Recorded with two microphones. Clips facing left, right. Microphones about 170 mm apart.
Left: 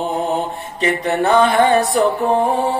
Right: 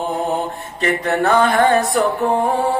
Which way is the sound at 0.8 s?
15° left (ahead or behind).